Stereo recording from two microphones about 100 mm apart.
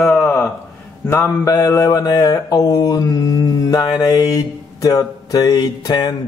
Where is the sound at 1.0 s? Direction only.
25° left (ahead or behind); by 6.1 s 40° left (ahead or behind).